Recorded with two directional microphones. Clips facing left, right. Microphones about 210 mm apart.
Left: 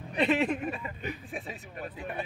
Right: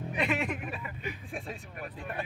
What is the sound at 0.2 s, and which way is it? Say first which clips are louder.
Speech: left 5 dB; 30° left (ahead or behind).